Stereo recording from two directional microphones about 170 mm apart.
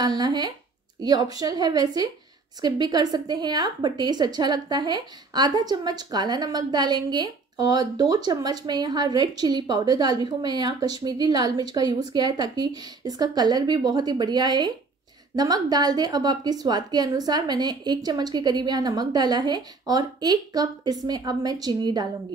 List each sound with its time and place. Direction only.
0.0 s a woman's voice: 25° right (ahead or behind)